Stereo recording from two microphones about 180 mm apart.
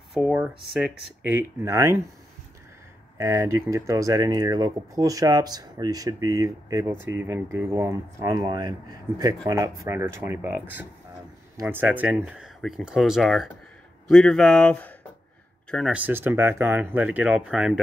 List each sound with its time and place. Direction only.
0.1 s speech: 5° right (ahead or behind)
3.2 s speech: 15° right (ahead or behind); by 15.0 s 5° left (ahead or behind)
15.7 s speech: 5° right (ahead or behind)